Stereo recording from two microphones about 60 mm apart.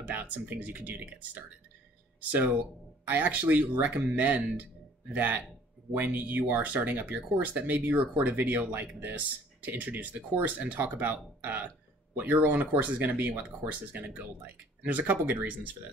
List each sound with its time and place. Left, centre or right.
0.1 s speech: right
3.1 s speech: right